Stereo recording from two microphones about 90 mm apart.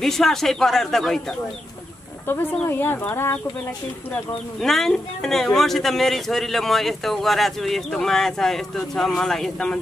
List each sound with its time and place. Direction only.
0.0 s a man's voice: 5° left (ahead or behind)
2.7 s speech: 25° left (ahead or behind)
4.6 s a man's voice: 5° left (ahead or behind)